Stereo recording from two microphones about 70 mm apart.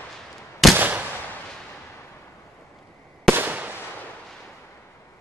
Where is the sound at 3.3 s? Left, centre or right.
Right.